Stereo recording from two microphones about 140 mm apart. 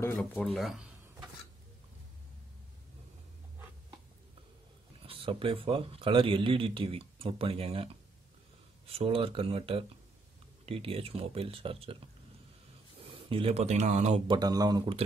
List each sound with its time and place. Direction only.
0.2 s speech: 10° left (ahead or behind)
0.6 s speech: centre (ahead or behind)
5.0 s speech: 40° right (ahead or behind)
13.3 s speech: 45° right (ahead or behind)
14.2 s speech: 30° right (ahead or behind)